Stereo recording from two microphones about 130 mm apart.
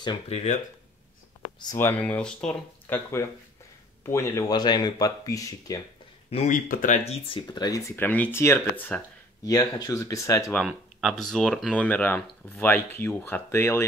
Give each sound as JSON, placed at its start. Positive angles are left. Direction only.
{"t": 0.3, "sound": "speech", "side_deg": 55}
{"t": 1.8, "sound": "speech", "side_deg": 15}
{"t": 3.2, "sound": "speech", "side_deg": 20}
{"t": 6.3, "sound": "speech", "side_deg": 75}
{"t": 7.1, "sound": "speech", "side_deg": 45}
{"t": 7.4, "sound": "speech", "side_deg": 30}
{"t": 7.9, "sound": "speech", "side_deg": 15}
{"t": 9.4, "sound": "speech", "side_deg": 30}
{"t": 10.5, "sound": "speech", "side_deg": 0}